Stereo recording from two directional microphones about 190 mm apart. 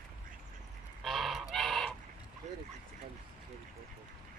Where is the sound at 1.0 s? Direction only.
Centre (ahead or behind).